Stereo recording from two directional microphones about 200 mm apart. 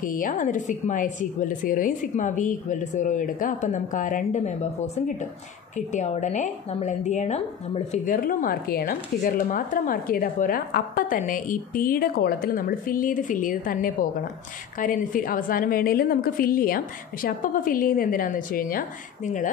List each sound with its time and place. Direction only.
0.0 s a woman's voice: 40° left (ahead or behind)